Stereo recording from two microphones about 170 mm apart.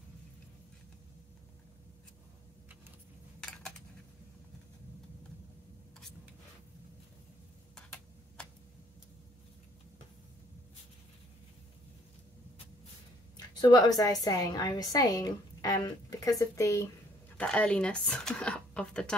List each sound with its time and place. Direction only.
3.3 s typing: 5° left (ahead or behind)
7.7 s tick-tock: 5° left (ahead or behind)
13.6 s a woman's voice: 25° left (ahead or behind)
17.4 s speech: 5° left (ahead or behind)